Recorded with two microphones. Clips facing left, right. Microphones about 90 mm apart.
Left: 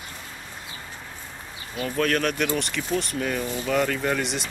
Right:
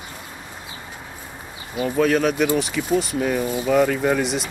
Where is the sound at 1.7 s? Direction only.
10° right (ahead or behind).